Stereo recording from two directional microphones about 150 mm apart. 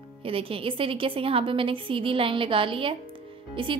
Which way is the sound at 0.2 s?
40° right (ahead or behind).